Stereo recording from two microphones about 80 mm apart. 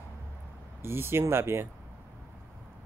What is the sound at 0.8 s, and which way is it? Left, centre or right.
Speech, right.